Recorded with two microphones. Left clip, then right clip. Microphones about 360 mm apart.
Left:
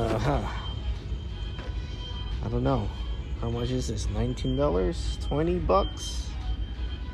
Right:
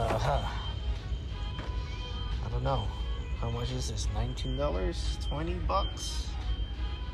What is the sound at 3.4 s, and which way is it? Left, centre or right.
Speech, centre.